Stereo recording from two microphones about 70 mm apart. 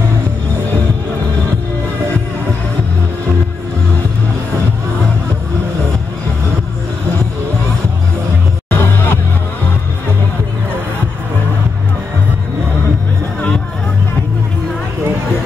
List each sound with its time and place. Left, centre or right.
8.6 s music: left